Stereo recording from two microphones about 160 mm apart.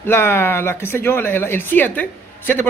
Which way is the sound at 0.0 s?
15° left (ahead or behind).